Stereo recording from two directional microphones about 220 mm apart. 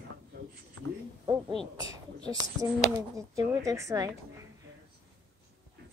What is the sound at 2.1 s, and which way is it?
Speech, 20° right (ahead or behind).